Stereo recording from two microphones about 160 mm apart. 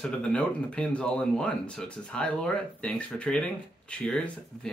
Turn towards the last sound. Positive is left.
turn(degrees=5)  # may be behind; listen again after turning